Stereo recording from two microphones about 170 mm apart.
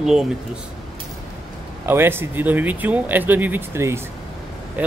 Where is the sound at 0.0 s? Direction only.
5° right (ahead or behind).